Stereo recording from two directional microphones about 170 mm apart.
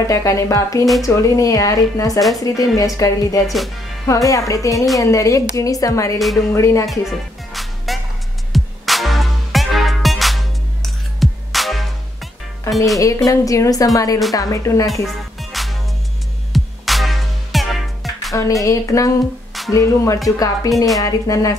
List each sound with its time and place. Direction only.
0.0 s a woman's voice: 20° left (ahead or behind)
2.1 s speech: centre (ahead or behind)
2.4 s a woman's voice: 20° left (ahead or behind)
3.4 s speech: centre (ahead or behind)
4.1 s a woman's voice: 20° left (ahead or behind)
6.1 s speech: centre (ahead or behind)
6.5 s music: 15° left (ahead or behind)
7.5 s music: centre (ahead or behind)
12.7 s speech: centre (ahead or behind)
13.0 s a woman's voice: 20° left (ahead or behind)
15.5 s music: centre (ahead or behind)
18.3 s a woman's voice: 20° left (ahead or behind)